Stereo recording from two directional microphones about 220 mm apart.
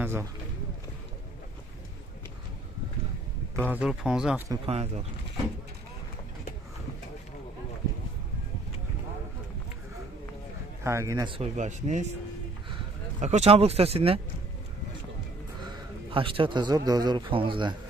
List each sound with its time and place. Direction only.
0.0 s a sound: 10° right (ahead or behind)
3.5 s a man's voice: 10° right (ahead or behind)
4.6 s speech: 30° right (ahead or behind)
10.8 s speech: 15° right (ahead or behind)
15.6 s a man's voice: 20° right (ahead or behind)